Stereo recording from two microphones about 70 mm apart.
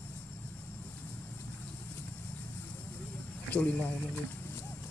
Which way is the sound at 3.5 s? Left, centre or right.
Left.